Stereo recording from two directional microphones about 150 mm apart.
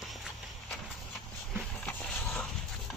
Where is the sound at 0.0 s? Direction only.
Centre (ahead or behind).